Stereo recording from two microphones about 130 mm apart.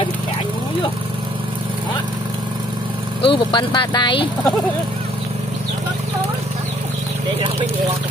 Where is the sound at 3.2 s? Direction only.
40° left (ahead or behind).